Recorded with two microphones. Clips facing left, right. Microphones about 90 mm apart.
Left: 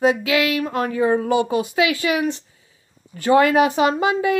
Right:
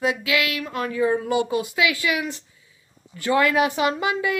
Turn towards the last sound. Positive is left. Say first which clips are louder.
# left 4 dB
turn(degrees=35)  # may be behind; listen again after turning